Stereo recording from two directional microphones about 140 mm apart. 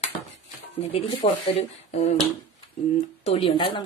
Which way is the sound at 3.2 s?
45° left (ahead or behind).